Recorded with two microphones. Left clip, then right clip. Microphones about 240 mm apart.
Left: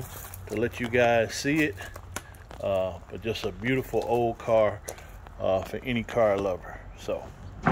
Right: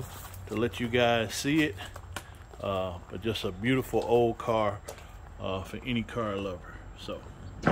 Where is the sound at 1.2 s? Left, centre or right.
Right.